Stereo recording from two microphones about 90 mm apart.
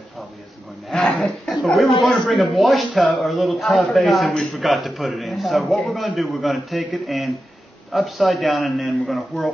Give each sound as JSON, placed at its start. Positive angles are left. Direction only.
{"t": 0.8, "sound": "a sound", "side_deg": 5}
{"t": 1.1, "sound": "speech", "side_deg": 10}
{"t": 1.5, "sound": "speech", "side_deg": 0}